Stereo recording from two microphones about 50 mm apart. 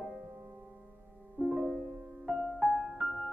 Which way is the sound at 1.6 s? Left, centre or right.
Centre.